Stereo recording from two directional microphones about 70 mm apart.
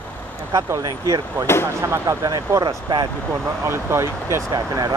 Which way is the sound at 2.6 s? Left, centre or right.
Right.